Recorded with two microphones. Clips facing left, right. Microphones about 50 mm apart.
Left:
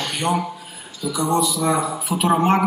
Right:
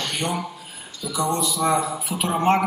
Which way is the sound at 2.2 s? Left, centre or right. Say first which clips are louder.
Left 2 dB; centre.